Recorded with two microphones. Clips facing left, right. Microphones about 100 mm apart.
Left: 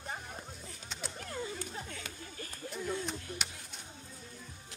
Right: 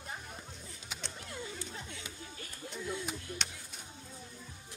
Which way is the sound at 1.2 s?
45° left (ahead or behind).